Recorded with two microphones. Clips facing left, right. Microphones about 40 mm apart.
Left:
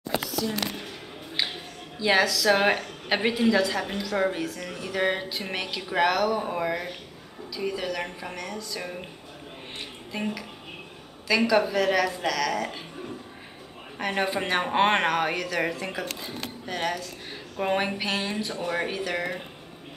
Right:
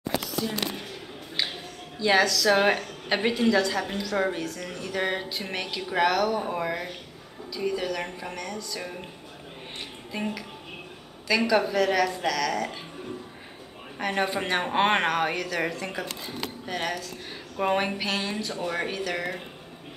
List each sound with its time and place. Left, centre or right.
1.3 s speech: centre
10.1 s speech: centre
13.9 s speech: centre